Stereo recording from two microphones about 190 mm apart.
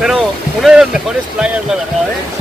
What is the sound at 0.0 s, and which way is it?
Boat, centre (ahead or behind).